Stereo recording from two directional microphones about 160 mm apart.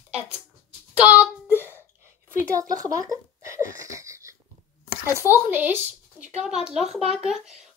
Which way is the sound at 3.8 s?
20° right (ahead or behind).